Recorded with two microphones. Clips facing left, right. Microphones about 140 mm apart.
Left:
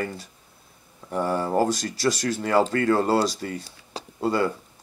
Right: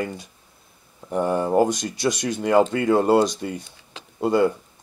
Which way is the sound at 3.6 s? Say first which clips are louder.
Left 6 dB; 35° left (ahead or behind).